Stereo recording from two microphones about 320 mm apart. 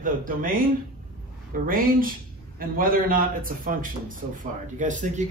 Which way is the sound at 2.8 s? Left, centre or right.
Right.